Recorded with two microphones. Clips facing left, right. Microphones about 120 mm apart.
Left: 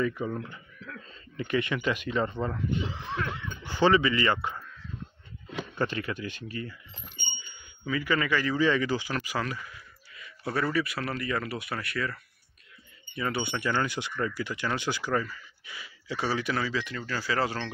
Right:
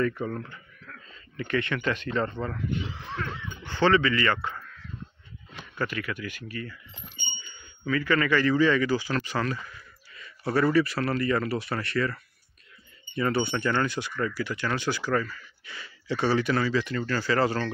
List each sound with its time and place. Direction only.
0.0 s speech: 10° left (ahead or behind)
1.1 s speech: 25° left (ahead or behind)
2.5 s speech: 25° left (ahead or behind)
3.2 s speech: 10° left (ahead or behind)
5.8 s speech: 25° left (ahead or behind)
7.8 s speech: 15° left (ahead or behind)
9.2 s speech: 5° left (ahead or behind)